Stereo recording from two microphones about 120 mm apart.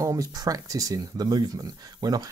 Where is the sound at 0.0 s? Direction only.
30° right (ahead or behind).